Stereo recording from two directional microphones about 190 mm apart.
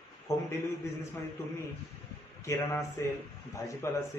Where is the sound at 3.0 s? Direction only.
15° left (ahead or behind).